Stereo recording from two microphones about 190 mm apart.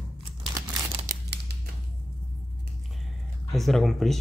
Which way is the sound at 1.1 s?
60° right (ahead or behind).